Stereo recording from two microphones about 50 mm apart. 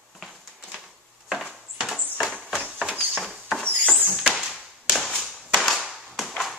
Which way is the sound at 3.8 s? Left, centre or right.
Centre.